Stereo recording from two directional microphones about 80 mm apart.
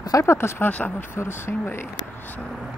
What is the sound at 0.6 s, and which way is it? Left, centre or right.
Speech, centre.